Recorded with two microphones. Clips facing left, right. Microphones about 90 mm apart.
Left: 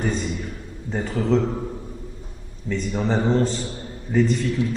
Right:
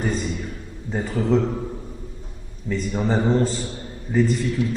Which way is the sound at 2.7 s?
5° right (ahead or behind).